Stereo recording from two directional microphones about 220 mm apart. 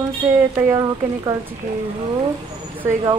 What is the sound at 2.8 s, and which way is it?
Speech, 20° right (ahead or behind).